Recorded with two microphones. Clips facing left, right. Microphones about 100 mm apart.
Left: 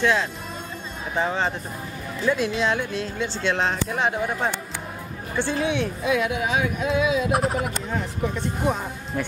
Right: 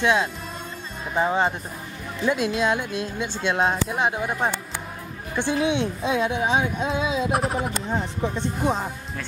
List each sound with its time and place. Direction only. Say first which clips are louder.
0.0 s a woman's voice: right 1 dB; 20° right (ahead or behind)
7.2 s speech: left 1 dB; centre (ahead or behind)
7.9 s a woman's voice: right 2 dB; 25° right (ahead or behind)